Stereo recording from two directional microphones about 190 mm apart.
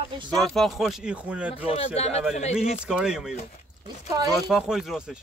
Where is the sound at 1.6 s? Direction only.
30° left (ahead or behind).